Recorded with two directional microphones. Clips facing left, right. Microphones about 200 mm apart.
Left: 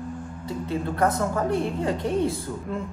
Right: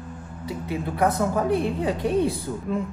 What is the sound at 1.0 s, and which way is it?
Speech, 15° right (ahead or behind).